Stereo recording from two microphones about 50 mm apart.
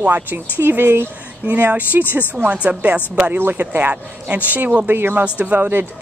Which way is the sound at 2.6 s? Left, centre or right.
Right.